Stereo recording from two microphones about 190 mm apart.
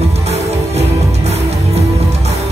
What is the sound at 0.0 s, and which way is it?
Music, 35° right (ahead or behind).